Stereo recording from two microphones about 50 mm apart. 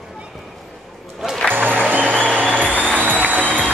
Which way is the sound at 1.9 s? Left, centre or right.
Right.